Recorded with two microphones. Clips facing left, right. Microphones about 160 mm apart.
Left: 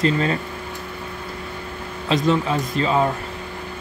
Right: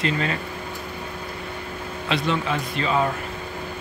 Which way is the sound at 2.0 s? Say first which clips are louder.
Left 5 dB; 40° left (ahead or behind).